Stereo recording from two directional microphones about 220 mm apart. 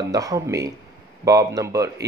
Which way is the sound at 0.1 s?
15° right (ahead or behind).